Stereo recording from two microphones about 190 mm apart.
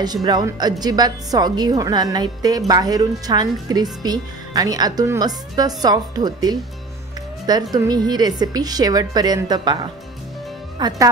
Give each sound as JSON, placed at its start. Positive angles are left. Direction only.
{"t": 0.0, "sound": "a woman's voice", "side_deg": -20}
{"t": 7.7, "sound": "a woman's voice", "side_deg": -20}